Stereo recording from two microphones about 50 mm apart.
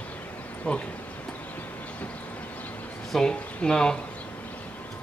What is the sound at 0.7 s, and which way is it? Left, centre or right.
Speech, left.